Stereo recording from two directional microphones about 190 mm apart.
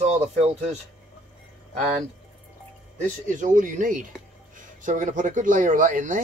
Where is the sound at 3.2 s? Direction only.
45° right (ahead or behind).